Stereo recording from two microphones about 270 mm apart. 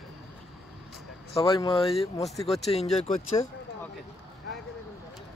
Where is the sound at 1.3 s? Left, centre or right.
Centre.